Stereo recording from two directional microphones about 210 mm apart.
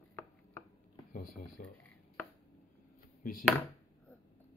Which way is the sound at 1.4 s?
40° left (ahead or behind).